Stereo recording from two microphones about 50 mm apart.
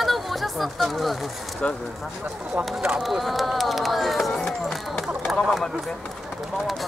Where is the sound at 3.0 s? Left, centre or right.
Centre.